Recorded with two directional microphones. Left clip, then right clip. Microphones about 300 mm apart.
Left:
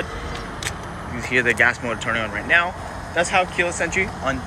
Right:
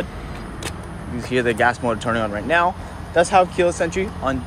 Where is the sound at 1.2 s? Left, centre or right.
Centre.